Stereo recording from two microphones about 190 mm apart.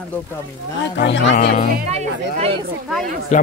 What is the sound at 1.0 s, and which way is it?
Speech, 65° left (ahead or behind).